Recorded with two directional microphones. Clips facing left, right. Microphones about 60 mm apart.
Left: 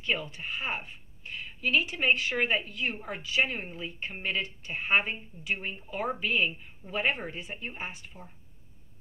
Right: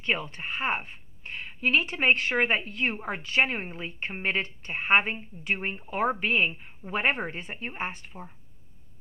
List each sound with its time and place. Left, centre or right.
0.0 s a woman's voice: right